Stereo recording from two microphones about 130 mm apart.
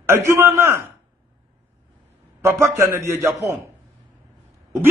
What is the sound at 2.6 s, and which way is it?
Speech, 20° right (ahead or behind).